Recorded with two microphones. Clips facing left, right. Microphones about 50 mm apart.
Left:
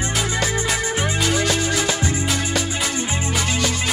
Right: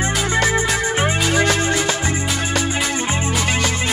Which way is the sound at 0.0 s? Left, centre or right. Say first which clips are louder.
Right 4 dB; right.